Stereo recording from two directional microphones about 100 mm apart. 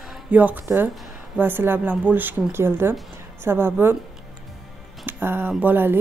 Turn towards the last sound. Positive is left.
turn(degrees=-20)  # may be behind; listen again after turning